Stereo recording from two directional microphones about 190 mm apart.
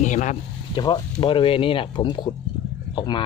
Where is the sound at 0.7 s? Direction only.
20° left (ahead or behind).